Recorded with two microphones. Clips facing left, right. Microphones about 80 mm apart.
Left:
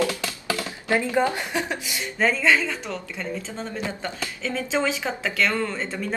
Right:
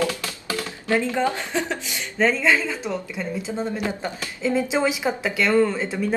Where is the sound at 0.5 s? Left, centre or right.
Left; by 2.5 s centre.